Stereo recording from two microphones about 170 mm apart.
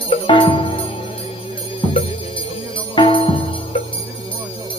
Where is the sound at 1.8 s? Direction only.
35° left (ahead or behind).